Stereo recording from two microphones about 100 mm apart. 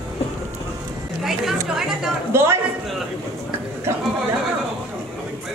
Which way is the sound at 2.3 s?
25° right (ahead or behind).